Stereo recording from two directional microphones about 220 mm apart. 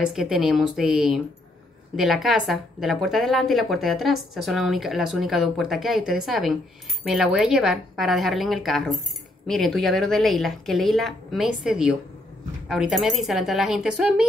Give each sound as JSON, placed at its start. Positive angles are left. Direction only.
{"t": 0.1, "sound": "a woman's voice", "side_deg": 0}